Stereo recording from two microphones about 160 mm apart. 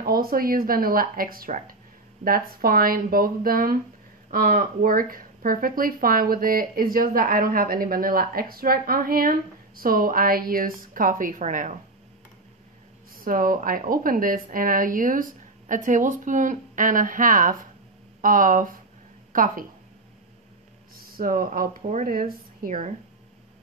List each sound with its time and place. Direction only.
0.0 s speech: 65° right (ahead or behind)
13.2 s speech: 60° right (ahead or behind)
20.9 s speech: 60° right (ahead or behind)